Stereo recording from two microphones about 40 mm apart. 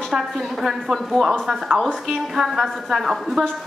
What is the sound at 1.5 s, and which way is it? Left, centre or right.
Speech, centre.